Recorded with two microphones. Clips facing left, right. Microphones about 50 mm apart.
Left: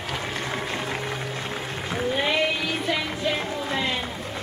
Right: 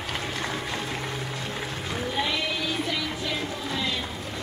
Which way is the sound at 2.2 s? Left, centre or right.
Left.